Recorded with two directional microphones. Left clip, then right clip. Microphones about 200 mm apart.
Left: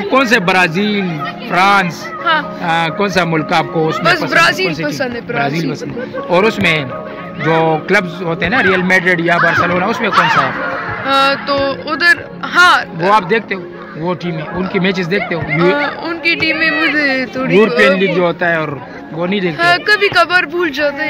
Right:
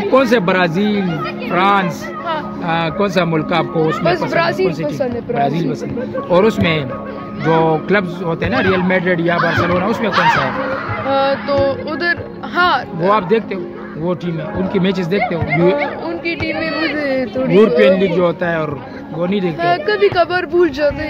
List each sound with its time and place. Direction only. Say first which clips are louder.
0.1 s a man's voice: left 2 dB; 20° left (ahead or behind)
4.0 s speech: left 8 dB; 10° right (ahead or behind)
5.3 s a man's voice: even; 25° left (ahead or behind)
11.1 s speech: left 3 dB; 10° right (ahead or behind)
13.3 s a man's voice: left 1 dB; 25° left (ahead or behind)
16.9 s speech: left 3 dB; 15° right (ahead or behind)
17.7 s a man's voice: left 1 dB; 25° left (ahead or behind)
19.6 s speech: left 3 dB; 15° right (ahead or behind)
20.5 s speech: right 1 dB; 35° right (ahead or behind)